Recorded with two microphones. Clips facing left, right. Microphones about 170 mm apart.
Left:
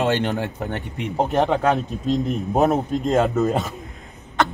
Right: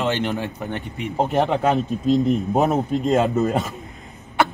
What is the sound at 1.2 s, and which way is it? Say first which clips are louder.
A man's voice: even; centre (ahead or behind).